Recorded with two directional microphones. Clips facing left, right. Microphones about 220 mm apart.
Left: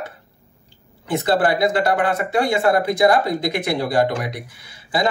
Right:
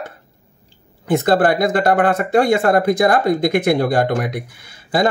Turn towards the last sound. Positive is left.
turn(degrees=-50)  # may be behind; listen again after turning